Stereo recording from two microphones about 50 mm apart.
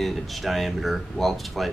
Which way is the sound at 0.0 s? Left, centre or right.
Centre.